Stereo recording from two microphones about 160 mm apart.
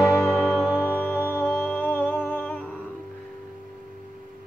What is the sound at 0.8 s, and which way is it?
Music, 10° left (ahead or behind).